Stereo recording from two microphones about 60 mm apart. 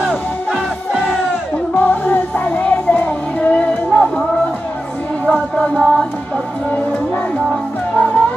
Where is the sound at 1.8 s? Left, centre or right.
Left.